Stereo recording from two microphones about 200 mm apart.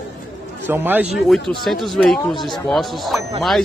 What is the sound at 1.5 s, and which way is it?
A man's voice, centre (ahead or behind).